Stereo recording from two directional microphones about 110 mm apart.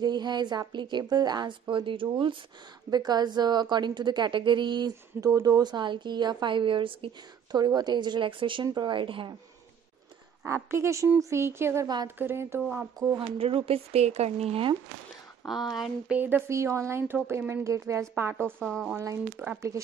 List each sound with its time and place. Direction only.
0.0 s a woman's voice: 40° right (ahead or behind)
7.5 s speech: 40° right (ahead or behind)
10.4 s speech: 25° right (ahead or behind)
13.4 s speech: 60° right (ahead or behind)
15.4 s speech: centre (ahead or behind)
16.2 s speech: 20° right (ahead or behind)
18.6 s speech: 5° left (ahead or behind)
19.3 s a woman's voice: 10° right (ahead or behind)